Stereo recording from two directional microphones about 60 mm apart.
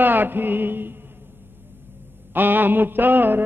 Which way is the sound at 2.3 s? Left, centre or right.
Right.